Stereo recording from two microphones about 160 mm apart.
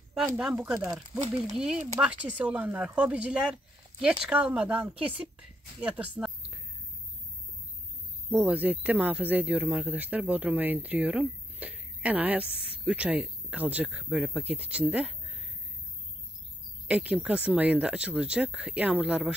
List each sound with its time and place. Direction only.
0.1 s speech: centre (ahead or behind)
1.1 s a man's voice: 15° right (ahead or behind)
1.4 s a man's voice: 5° right (ahead or behind)
8.3 s a man's voice: 10° right (ahead or behind)
16.8 s a man's voice: 5° right (ahead or behind)